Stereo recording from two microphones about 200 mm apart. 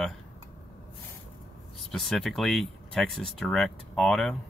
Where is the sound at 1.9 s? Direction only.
Centre (ahead or behind).